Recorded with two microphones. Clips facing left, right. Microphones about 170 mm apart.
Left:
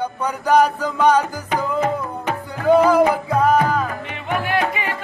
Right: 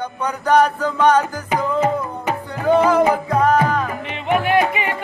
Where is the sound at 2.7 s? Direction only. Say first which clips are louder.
Left 1 dB; 10° left (ahead or behind).